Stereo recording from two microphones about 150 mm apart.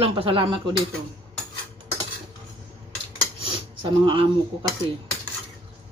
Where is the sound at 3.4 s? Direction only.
35° right (ahead or behind).